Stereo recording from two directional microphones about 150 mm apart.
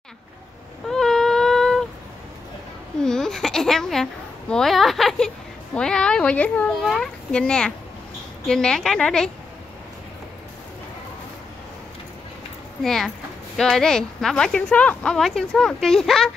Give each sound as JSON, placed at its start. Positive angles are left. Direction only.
{"t": 0.8, "sound": "a sound", "side_deg": 5}
{"t": 3.0, "sound": "a child's voice", "side_deg": 5}
{"t": 12.8, "sound": "a woman's voice", "side_deg": 0}